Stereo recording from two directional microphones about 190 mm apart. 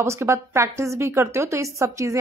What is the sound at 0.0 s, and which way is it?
Speech, 15° right (ahead or behind).